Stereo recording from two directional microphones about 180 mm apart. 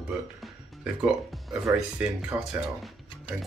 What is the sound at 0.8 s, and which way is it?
Speech, 5° right (ahead or behind).